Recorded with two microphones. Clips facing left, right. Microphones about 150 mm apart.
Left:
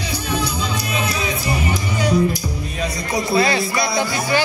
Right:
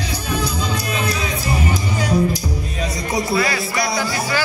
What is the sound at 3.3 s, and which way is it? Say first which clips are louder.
Speech: left 5 dB; 25° left (ahead or behind).